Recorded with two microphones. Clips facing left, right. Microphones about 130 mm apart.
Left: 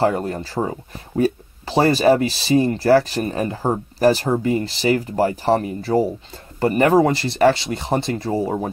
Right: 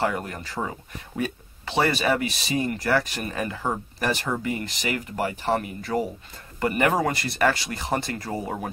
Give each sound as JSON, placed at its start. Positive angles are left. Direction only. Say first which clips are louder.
{"t": 0.0, "sound": "speech", "louder": "left 7 dB", "side_deg": 30}